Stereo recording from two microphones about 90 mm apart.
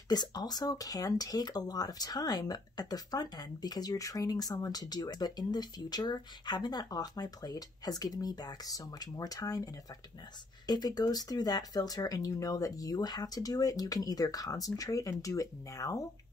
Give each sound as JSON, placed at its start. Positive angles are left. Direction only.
{"t": 0.1, "sound": "speech", "side_deg": 50}
{"t": 10.7, "sound": "speech", "side_deg": 50}